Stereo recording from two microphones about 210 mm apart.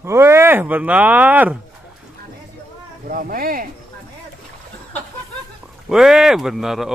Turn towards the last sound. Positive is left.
turn(degrees=0)  # may be behind; listen again after turning